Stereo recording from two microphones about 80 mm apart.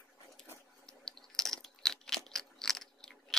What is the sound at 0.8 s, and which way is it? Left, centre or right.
Crunch, centre.